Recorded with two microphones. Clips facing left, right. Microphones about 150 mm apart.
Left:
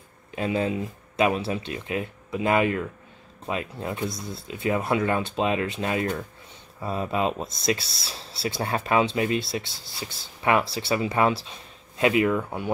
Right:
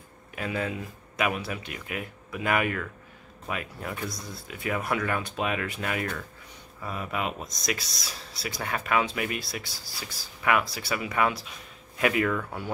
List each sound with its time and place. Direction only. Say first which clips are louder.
0.4 s speech: left 6 dB; 25° left (ahead or behind)